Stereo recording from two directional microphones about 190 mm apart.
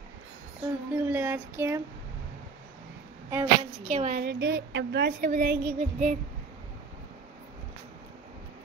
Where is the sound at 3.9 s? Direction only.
40° right (ahead or behind).